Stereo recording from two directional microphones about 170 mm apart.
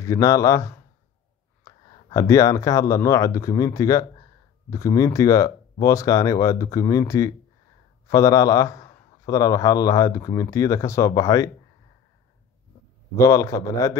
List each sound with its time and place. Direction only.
0.0 s a man's voice: 20° left (ahead or behind)
13.1 s a man's voice: 20° left (ahead or behind)